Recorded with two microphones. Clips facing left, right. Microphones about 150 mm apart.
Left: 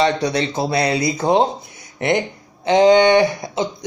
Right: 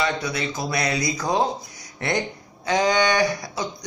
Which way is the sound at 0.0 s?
35° left (ahead or behind).